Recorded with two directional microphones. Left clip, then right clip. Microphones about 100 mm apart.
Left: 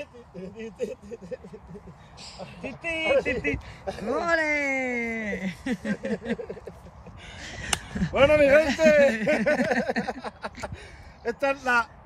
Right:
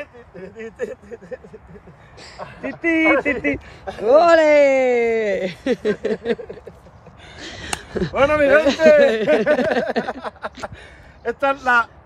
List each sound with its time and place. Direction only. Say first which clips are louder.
0.0 s speech: right 5 dB; 30° right (ahead or behind)
2.8 s speech: right 9 dB; 25° left (ahead or behind)
3.2 s speech: right 5 dB; 15° right (ahead or behind)
3.4 s speech: right 6 dB; 5° right (ahead or behind); by 11.8 s 20° right (ahead or behind)